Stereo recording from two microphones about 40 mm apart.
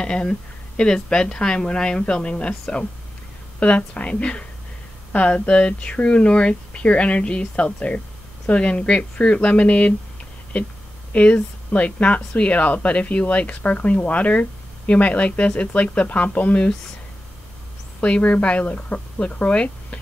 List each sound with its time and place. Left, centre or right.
0.0 s speech: left
3.5 s speech: left
11.1 s speech: left
18.0 s speech: left